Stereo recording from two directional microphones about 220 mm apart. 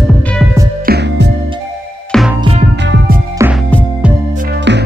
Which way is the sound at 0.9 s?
50° right (ahead or behind).